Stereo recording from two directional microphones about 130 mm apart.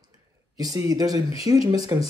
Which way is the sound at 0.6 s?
30° right (ahead or behind).